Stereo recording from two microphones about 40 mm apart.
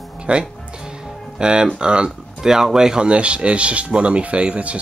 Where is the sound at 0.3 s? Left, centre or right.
Right.